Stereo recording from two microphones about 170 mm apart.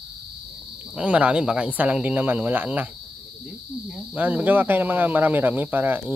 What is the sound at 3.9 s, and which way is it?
Speech, 10° right (ahead or behind).